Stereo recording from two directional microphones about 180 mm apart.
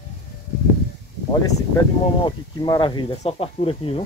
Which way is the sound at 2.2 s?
25° left (ahead or behind).